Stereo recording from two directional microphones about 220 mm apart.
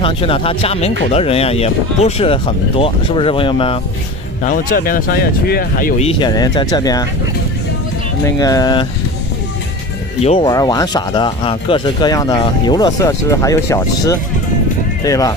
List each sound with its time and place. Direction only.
0.0 s speech: 25° left (ahead or behind)
4.4 s speech: 40° left (ahead or behind)
6.0 s speech: 20° left (ahead or behind)
8.4 s speech: 15° left (ahead or behind)
10.2 s speech: 25° left (ahead or behind)